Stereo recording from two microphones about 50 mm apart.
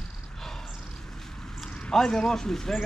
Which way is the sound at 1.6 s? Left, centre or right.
Left.